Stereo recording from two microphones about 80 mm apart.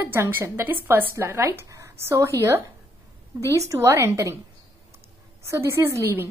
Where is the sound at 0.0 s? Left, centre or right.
Right.